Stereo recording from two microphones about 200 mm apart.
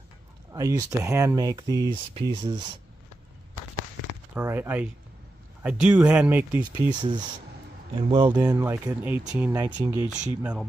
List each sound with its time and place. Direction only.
0.5 s speech: 15° right (ahead or behind)
4.4 s speech: 10° right (ahead or behind)
6.9 s speech: 20° right (ahead or behind); by 10.7 s 5° right (ahead or behind)